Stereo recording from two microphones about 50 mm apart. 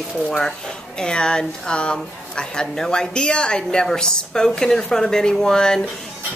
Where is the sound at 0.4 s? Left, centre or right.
Centre.